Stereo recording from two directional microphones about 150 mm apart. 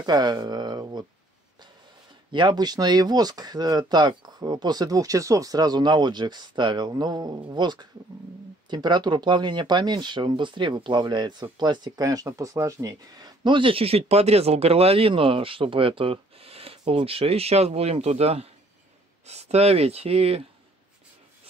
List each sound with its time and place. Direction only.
0.0 s speech: 30° right (ahead or behind)
2.3 s speech: 30° right (ahead or behind)